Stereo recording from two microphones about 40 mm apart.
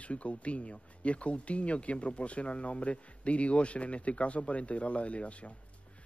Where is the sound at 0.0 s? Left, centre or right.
Left.